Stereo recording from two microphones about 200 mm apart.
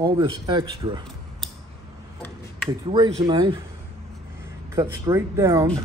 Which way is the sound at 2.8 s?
25° right (ahead or behind).